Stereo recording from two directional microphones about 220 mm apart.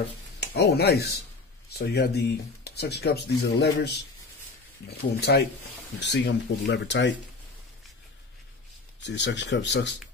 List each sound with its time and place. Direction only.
0.4 s speech: 45° left (ahead or behind)
9.0 s speech: 50° left (ahead or behind)